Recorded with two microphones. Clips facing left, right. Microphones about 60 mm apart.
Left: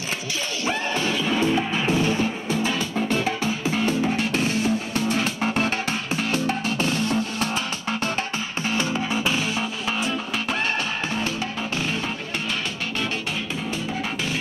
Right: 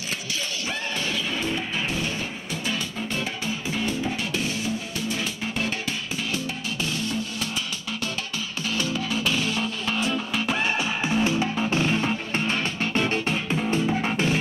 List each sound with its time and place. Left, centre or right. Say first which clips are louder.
1.4 s music: left 6 dB; left
3.8 s music: left 6 dB; left
8.6 s music: left 2 dB; left
9.9 s music: right 2 dB; centre
11.7 s music: right 3 dB; right